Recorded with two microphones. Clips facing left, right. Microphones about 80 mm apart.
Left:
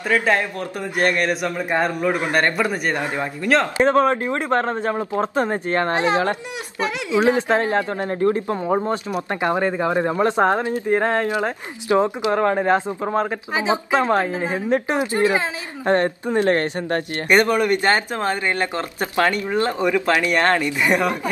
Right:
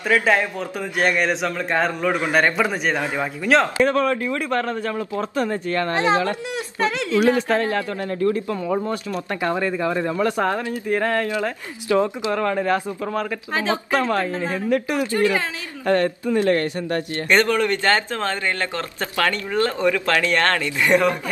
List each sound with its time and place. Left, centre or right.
0.2 s speech: centre
0.7 s a man's voice: centre
1.5 s a man's voice: centre
3.7 s a man's voice: left
6.8 s a man's voice: centre
7.2 s a man's voice: left
13.5 s a man's voice: centre